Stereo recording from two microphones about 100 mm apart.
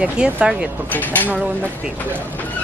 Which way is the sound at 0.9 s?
15° left (ahead or behind).